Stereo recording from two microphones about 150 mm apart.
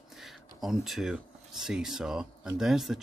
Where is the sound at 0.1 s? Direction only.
Centre (ahead or behind).